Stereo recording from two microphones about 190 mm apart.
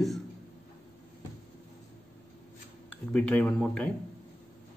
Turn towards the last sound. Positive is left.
turn(degrees=5)  # may be behind; listen again after turning